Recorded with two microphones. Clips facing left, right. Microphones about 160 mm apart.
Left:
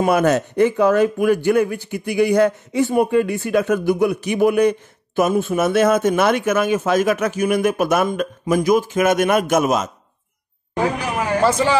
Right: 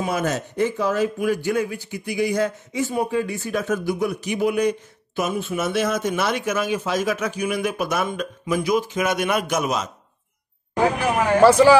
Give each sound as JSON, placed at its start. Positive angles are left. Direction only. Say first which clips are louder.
{"t": 0.0, "sound": "speech", "louder": "left 8 dB", "side_deg": 65}
{"t": 11.4, "sound": "speech", "louder": "right 6 dB", "side_deg": -10}